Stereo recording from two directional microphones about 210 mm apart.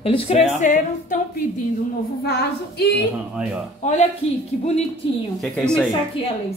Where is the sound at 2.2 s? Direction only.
50° left (ahead or behind).